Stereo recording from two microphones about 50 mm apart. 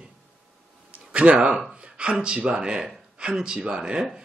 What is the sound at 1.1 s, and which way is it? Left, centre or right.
Speech, right.